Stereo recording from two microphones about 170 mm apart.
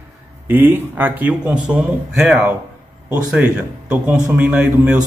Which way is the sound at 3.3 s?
5° right (ahead or behind).